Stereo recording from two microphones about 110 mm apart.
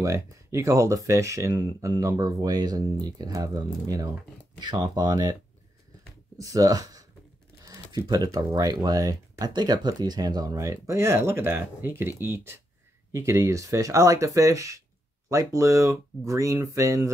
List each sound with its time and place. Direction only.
0.0 s speech: 25° right (ahead or behind)